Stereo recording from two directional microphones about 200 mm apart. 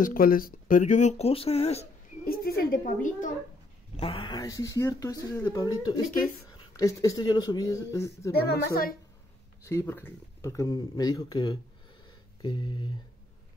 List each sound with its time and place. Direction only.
0.0 s speech: 45° left (ahead or behind)
2.2 s a woman's voice: 50° left (ahead or behind)
3.9 s speech: 30° left (ahead or behind)
8.5 s a woman's voice: 50° left (ahead or behind)
9.7 s speech: 10° left (ahead or behind)